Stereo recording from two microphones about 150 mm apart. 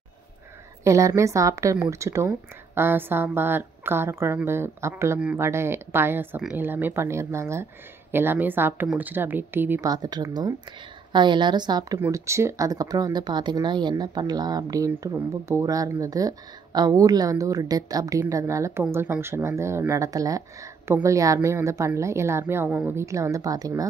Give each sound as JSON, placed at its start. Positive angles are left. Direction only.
{"t": 0.8, "sound": "a woman's voice", "side_deg": -20}
{"t": 9.8, "sound": "a woman's voice", "side_deg": -25}